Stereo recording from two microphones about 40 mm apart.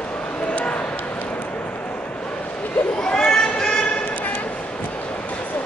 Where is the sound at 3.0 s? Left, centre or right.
Left.